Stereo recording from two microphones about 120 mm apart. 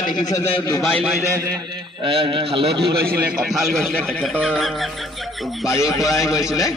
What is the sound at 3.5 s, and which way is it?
Snicker, centre (ahead or behind).